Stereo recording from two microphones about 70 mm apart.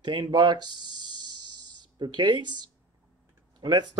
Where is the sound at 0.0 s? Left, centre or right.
Right.